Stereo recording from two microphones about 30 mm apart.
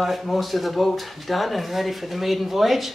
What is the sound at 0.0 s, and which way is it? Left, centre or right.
Speech, centre.